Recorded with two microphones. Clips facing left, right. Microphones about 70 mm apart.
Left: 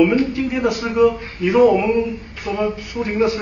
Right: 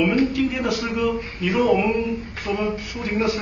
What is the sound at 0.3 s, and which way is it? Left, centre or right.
Speech, left.